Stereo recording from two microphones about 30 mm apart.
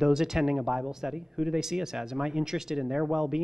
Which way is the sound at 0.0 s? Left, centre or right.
Centre.